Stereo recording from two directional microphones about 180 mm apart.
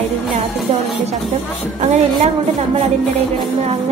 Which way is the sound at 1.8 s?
40° right (ahead or behind).